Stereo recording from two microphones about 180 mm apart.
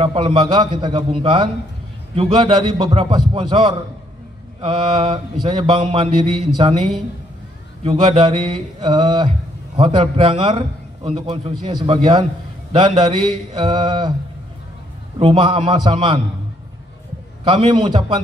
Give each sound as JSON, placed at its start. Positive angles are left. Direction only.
{"t": 0.0, "sound": "mantra", "side_deg": -30}
{"t": 7.8, "sound": "mantra", "side_deg": -30}
{"t": 15.1, "sound": "mantra", "side_deg": -30}
{"t": 17.5, "sound": "mantra", "side_deg": -25}